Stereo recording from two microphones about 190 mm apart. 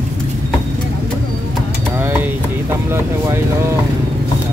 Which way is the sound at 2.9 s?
10° right (ahead or behind).